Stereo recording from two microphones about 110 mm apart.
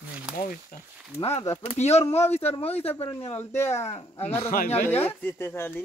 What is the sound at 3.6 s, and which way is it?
Speech, 80° left.